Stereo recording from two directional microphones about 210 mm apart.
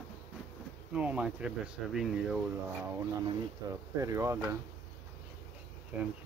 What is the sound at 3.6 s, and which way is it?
Speech, 15° right (ahead or behind).